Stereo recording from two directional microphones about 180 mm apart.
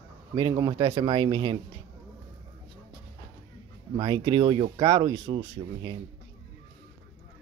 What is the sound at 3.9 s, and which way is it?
Speech, 25° right (ahead or behind).